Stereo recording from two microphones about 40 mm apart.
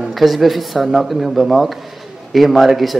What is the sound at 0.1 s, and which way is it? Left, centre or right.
A man's voice, centre.